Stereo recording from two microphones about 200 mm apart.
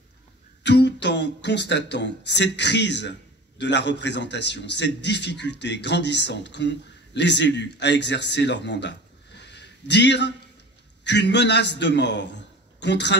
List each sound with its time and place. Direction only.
0.7 s a man's voice: 60° left (ahead or behind)